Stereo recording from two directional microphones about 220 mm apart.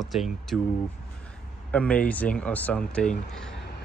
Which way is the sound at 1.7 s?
5° left (ahead or behind).